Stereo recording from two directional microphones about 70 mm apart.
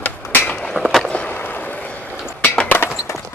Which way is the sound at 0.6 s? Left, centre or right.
Centre.